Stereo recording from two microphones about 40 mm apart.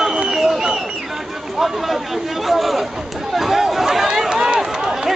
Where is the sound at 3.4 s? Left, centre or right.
Centre.